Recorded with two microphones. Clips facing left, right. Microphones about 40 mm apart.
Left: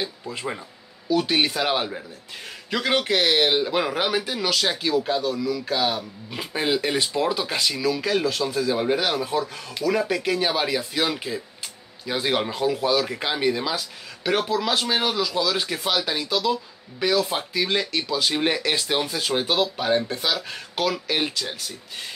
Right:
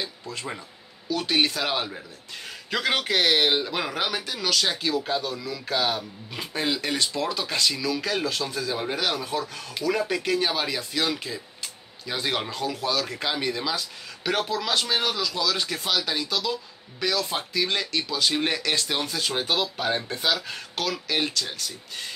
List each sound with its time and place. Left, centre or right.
0.0 s speech: centre
2.7 s a man's voice: centre
3.5 s speech: centre